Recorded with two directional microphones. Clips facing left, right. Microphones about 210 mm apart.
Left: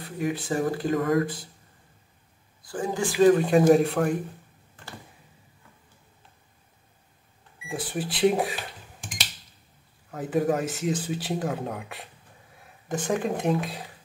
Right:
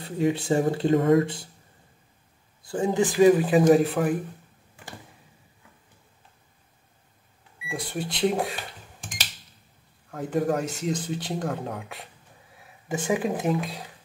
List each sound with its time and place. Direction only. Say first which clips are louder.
0.0 s speech: right 4 dB; 25° right (ahead or behind)
2.6 s speech: right 5 dB; 25° right (ahead or behind)
3.2 s speech: even; 5° right (ahead or behind)
7.6 s speech: left 1 dB; 5° left (ahead or behind)
10.1 s speech: left 1 dB; centre (ahead or behind)